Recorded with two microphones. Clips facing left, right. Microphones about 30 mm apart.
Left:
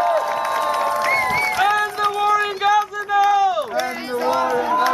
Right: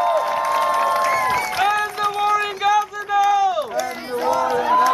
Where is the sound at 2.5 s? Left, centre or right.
Left.